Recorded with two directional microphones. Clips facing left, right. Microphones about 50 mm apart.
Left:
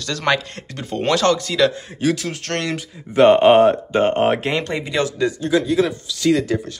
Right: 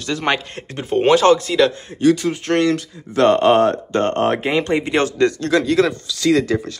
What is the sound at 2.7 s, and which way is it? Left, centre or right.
Speech, centre.